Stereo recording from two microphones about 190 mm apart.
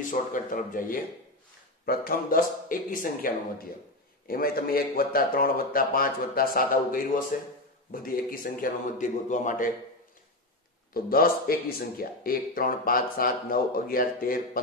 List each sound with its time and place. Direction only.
0.1 s speech: 45° left (ahead or behind)
10.9 s speech: 50° left (ahead or behind)